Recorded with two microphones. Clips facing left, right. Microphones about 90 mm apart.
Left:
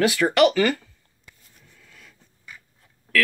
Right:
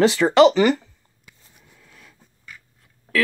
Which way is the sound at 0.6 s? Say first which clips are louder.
Right 4 dB; 15° right (ahead or behind).